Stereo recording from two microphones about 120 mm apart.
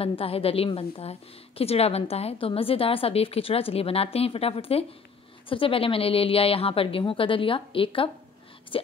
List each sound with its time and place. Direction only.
0.0 s a woman's voice: 55° left (ahead or behind)